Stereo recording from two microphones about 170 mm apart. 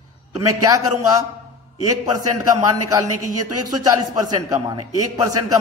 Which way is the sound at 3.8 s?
20° right (ahead or behind).